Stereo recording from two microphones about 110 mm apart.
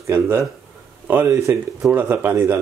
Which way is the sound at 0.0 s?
25° right (ahead or behind).